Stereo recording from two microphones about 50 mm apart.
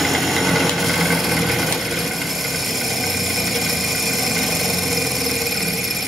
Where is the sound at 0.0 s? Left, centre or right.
Centre.